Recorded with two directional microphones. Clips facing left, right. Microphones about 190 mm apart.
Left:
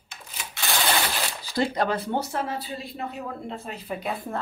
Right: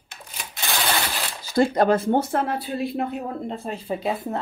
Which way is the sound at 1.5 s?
50° right (ahead or behind).